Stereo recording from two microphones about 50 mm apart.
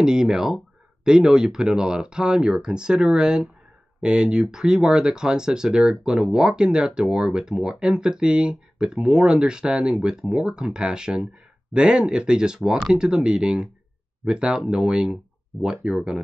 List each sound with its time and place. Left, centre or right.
0.0 s speech: centre